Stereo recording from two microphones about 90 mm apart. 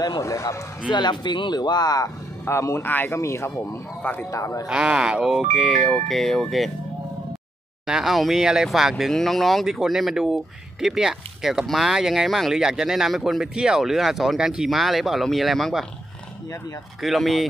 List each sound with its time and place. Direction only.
0.2 s speech: 35° left (ahead or behind)
0.8 s speech: 60° left (ahead or behind)
2.4 s speech: 30° left (ahead or behind)
3.2 s speech: 35° left (ahead or behind)
4.0 s speech: 20° left (ahead or behind)
4.3 s speech: 35° left (ahead or behind)
4.6 s speech: 5° right (ahead or behind)
7.8 s speech: 5° right (ahead or behind)
17.0 s speech: centre (ahead or behind)